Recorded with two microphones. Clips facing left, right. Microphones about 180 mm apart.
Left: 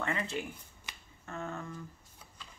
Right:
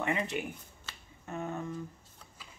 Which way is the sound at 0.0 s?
20° right (ahead or behind).